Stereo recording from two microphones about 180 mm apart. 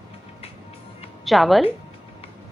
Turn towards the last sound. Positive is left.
turn(degrees=0)  # may be behind; listen again after turning